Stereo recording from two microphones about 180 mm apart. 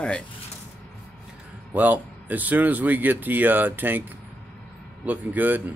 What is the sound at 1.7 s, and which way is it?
Speech, 10° right (ahead or behind).